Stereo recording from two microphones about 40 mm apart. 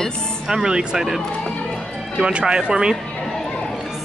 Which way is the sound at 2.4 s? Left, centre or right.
Centre.